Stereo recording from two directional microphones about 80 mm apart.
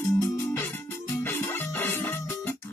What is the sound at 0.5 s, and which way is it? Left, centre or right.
Music, left.